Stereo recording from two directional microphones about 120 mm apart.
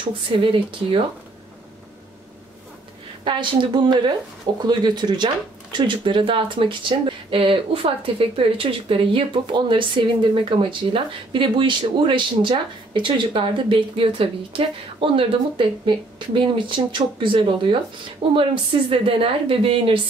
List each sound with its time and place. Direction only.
0.3 s speech: 50° right (ahead or behind)
3.3 s speech: 40° right (ahead or behind)